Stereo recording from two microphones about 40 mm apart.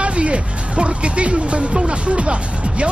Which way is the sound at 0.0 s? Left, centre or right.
Right.